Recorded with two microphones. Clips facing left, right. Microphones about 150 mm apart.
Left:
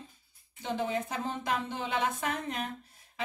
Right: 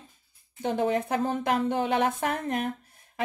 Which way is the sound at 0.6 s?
55° right (ahead or behind).